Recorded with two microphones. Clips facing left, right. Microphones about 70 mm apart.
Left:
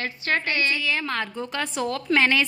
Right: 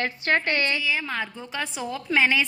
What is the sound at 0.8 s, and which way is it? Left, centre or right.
A woman's voice, centre.